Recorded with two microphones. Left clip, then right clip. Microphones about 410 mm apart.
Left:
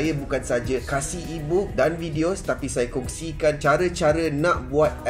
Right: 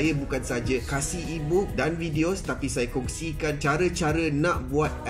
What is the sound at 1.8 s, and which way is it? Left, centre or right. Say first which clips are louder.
Speech: left 4 dB; left.